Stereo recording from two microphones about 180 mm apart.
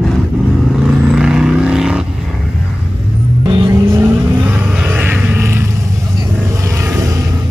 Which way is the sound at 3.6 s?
15° right (ahead or behind).